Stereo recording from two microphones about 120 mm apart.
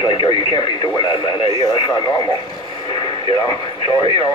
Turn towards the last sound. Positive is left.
turn(degrees=40)  # may be behind; listen again after turning